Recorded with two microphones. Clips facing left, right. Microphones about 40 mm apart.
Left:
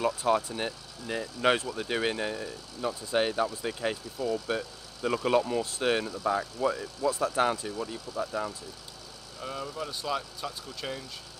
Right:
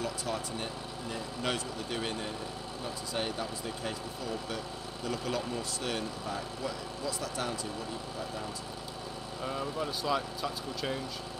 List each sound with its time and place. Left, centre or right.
0.0 s speech: left
9.4 s speech: centre